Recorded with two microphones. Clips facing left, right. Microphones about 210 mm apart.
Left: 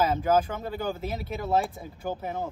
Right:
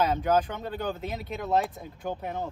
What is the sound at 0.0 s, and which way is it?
Speech, 5° left (ahead or behind).